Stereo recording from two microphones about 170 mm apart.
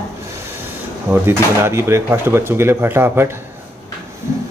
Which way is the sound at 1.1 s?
15° right (ahead or behind).